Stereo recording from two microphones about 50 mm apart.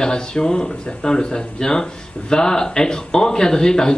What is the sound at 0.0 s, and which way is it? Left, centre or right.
Speech, centre.